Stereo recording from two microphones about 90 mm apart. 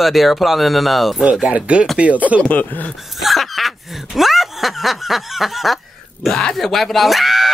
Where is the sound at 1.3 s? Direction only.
15° right (ahead or behind).